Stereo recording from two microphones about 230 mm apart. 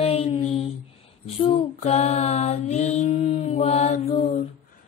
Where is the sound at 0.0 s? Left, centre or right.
Left.